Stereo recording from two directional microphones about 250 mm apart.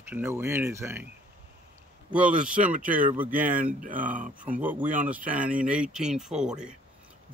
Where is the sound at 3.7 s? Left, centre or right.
Right.